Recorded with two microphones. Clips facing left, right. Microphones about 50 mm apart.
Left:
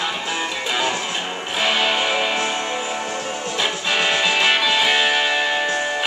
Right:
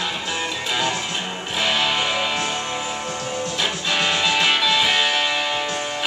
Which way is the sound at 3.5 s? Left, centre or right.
Centre.